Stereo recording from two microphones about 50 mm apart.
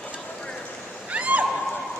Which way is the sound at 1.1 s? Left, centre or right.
Right.